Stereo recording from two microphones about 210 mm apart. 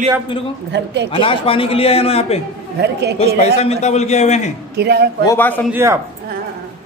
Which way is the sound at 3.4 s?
30° left (ahead or behind).